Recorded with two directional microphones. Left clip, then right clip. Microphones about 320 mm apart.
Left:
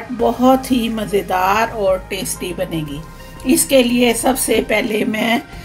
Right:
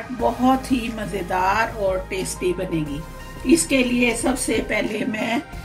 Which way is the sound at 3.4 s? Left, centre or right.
Left.